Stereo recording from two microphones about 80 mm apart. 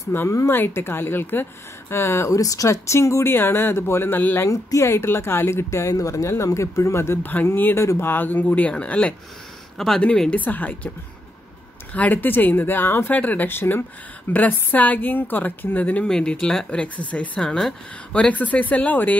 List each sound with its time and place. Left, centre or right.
0.3 s speech: left
0.6 s a woman's voice: left
4.5 s a woman's voice: left
7.8 s speech: left
8.1 s a woman's voice: left
9.8 s speech: centre
10.3 s a woman's voice: centre
11.9 s a woman's voice: centre
17.4 s speech: centre
18.1 s a woman's voice: centre